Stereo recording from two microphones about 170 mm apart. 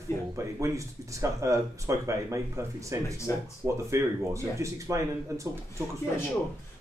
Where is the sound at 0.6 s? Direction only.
20° right (ahead or behind).